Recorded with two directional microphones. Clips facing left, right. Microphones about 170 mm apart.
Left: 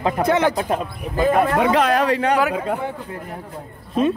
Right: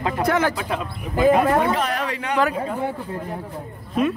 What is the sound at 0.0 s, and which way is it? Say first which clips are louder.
Speech: left 3 dB; 20° left (ahead or behind).